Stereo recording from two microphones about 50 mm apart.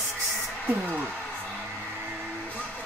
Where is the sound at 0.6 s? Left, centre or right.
Right.